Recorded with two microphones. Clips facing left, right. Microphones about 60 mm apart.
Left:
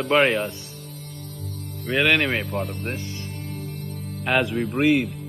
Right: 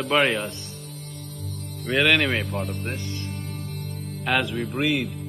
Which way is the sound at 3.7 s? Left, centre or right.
Centre.